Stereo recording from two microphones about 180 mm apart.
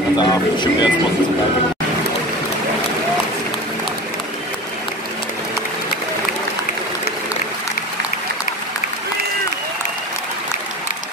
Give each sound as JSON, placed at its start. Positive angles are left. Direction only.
{"t": 0.2, "sound": "speech", "side_deg": 25}